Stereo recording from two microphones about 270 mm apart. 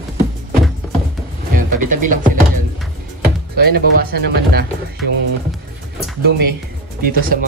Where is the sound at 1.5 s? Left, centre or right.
Right.